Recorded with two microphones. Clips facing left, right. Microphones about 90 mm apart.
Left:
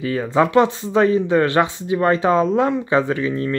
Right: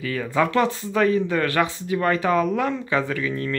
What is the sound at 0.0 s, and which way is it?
Speech, 25° left (ahead or behind).